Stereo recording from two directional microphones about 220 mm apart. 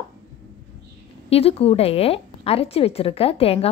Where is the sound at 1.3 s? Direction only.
25° left (ahead or behind).